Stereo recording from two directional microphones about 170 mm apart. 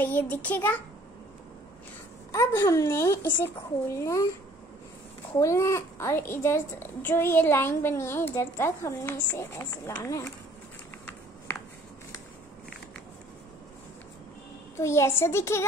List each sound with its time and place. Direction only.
0.0 s a child's voice: 10° left (ahead or behind)
2.3 s a child's voice: 20° left (ahead or behind)
5.4 s a child's voice: 15° left (ahead or behind)
14.8 s a child's voice: 15° left (ahead or behind)